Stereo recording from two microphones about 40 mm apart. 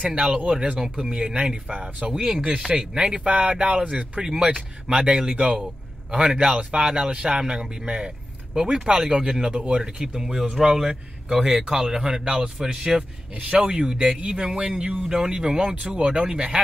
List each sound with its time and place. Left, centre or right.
0.0 s speech: right
1.2 s speech: right